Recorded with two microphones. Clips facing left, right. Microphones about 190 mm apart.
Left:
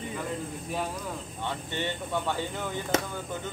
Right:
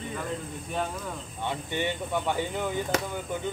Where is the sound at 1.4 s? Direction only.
15° right (ahead or behind).